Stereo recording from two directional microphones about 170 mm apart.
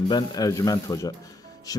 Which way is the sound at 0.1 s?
25° left (ahead or behind).